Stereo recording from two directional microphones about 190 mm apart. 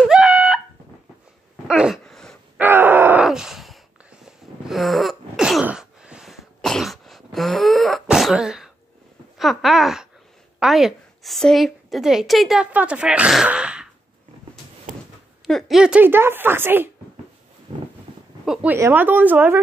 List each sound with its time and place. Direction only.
0.1 s a sound: 5° right (ahead or behind)
1.7 s gasp: centre (ahead or behind)
2.6 s groan: 10° right (ahead or behind)
4.6 s throat clearing: centre (ahead or behind)
9.4 s a sound: centre (ahead or behind)
10.6 s a woman's voice: centre (ahead or behind)
14.9 s a sound: 45° right (ahead or behind)
15.4 s a woman's voice: centre (ahead or behind)
18.4 s speech: 5° right (ahead or behind)